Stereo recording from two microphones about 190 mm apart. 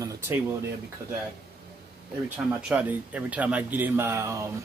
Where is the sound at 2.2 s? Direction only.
10° right (ahead or behind).